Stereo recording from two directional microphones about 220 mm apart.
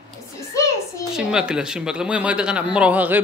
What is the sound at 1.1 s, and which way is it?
A man's voice, 5° right (ahead or behind).